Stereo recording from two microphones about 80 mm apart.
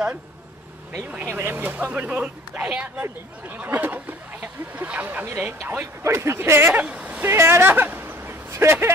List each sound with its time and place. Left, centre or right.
0.9 s speech: right
6.8 s speech: centre
7.2 s speech: right